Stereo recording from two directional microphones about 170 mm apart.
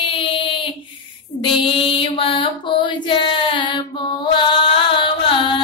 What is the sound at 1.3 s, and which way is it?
Mantra, 30° left (ahead or behind).